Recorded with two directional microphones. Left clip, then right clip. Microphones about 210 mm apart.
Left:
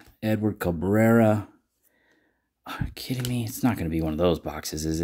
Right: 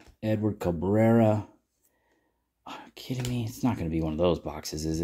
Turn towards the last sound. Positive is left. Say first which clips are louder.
# left 3 dB
turn(degrees=20)  # may be behind; listen again after turning